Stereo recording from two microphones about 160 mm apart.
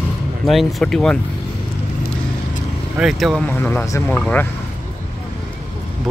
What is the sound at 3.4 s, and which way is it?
Speech, 10° left (ahead or behind).